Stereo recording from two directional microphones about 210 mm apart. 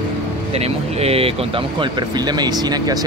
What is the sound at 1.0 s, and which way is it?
Speech, 30° right (ahead or behind).